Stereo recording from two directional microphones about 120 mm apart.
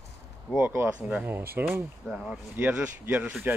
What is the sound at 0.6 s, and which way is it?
Speech, 15° right (ahead or behind).